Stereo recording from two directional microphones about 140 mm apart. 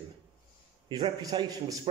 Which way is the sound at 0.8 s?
30° right (ahead or behind).